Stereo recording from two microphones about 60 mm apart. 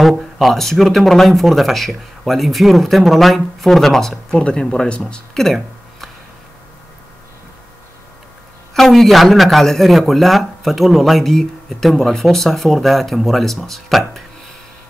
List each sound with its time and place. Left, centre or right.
0.0 s speech: centre
4.4 s speech: centre
8.7 s speech: centre